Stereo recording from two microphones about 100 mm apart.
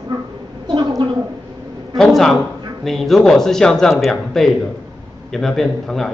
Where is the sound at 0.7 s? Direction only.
50° right (ahead or behind).